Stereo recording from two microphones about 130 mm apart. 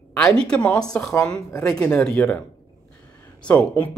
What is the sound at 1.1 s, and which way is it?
Speech, 25° left (ahead or behind).